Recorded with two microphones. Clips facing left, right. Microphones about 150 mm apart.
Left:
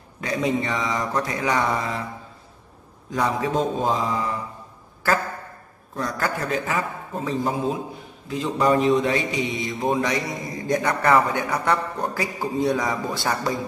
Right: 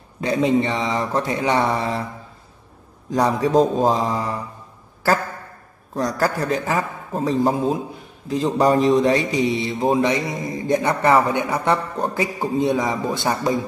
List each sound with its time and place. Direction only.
0.2 s mantra: 30° right (ahead or behind)
3.1 s a man's voice: 35° right (ahead or behind)
5.9 s a man's voice: 35° right (ahead or behind)
8.3 s mantra: 35° right (ahead or behind)